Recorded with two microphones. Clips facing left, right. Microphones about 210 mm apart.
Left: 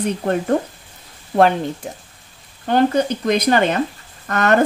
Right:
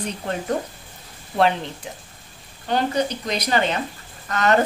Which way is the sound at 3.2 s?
50° left (ahead or behind).